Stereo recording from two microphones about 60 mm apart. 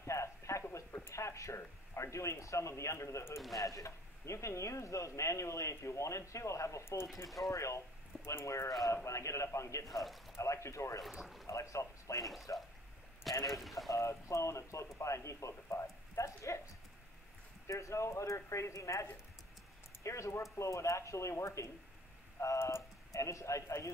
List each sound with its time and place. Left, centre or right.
0.0 s a sound: left
1.0 s speech: left
3.5 s a man's voice: left
7.4 s a man's voice: left
9.8 s speech: centre
10.3 s a man's voice: left
11.0 s speech: centre
11.4 s speech: left
12.5 s a sound: left
13.5 s speech: centre
13.8 s a man's voice: left
17.6 s a man's voice: left
22.6 s speech: left
23.1 s a man's voice: left